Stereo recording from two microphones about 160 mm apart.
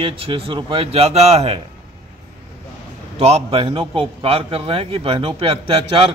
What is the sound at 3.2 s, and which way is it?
Speech, 40° right (ahead or behind).